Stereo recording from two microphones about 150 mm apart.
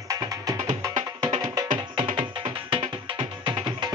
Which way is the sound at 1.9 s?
40° right (ahead or behind).